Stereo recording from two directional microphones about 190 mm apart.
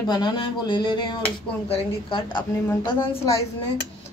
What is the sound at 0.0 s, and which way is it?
A woman's voice, 20° left (ahead or behind).